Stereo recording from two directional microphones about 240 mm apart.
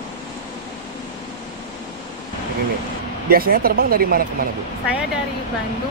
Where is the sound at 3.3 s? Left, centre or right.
Right.